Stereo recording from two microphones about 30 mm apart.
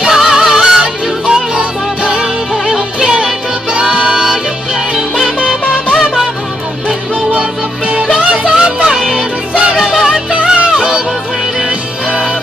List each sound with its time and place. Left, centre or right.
0.0 s music: right
1.6 s music: right
4.1 s music: right
8.3 s music: right
9.5 s music: right